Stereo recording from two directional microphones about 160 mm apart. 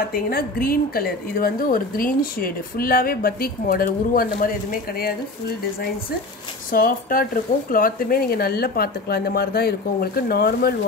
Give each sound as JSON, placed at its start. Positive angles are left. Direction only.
{"t": 0.1, "sound": "speech", "side_deg": 65}
{"t": 6.7, "sound": "speech", "side_deg": 60}